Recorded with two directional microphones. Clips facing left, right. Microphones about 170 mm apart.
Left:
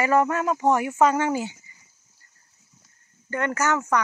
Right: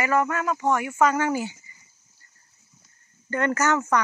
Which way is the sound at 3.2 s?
10° left (ahead or behind).